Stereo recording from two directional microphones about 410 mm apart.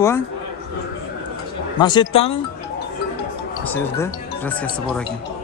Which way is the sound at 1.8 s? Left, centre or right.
Centre.